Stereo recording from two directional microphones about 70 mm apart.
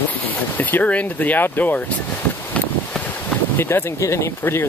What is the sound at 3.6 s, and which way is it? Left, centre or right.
Speech, left.